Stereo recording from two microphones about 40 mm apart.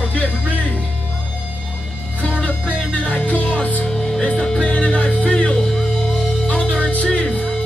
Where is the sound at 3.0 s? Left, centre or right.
Left.